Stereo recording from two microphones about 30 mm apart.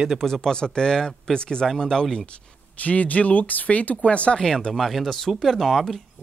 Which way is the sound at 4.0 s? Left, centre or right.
Left.